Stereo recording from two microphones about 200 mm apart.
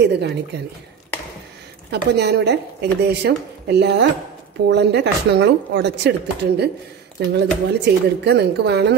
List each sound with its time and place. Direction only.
0.0 s a woman's voice: 55° right (ahead or behind)
1.9 s a woman's voice: 55° right (ahead or behind)